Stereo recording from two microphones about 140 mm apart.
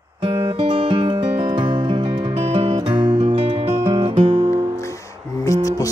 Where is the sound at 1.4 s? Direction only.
30° right (ahead or behind).